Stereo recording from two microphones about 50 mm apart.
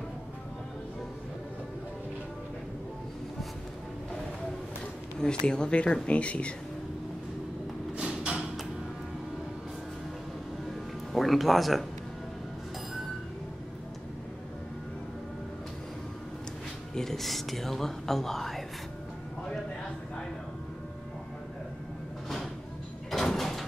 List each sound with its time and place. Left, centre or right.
5.5 s speech: centre
8.0 s thump: centre
11.1 s speech: centre
16.9 s speech: centre
23.1 s door: centre